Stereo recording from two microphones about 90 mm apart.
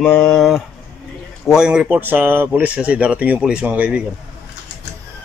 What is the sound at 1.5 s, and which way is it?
Speech, 10° right (ahead or behind).